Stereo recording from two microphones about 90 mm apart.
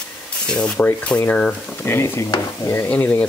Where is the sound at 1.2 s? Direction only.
20° left (ahead or behind).